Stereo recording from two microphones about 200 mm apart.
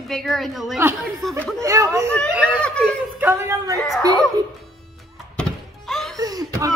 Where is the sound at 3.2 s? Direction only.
10° right (ahead or behind).